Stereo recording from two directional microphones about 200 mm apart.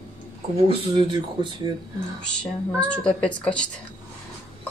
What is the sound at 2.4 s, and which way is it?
A woman's voice, 5° left (ahead or behind).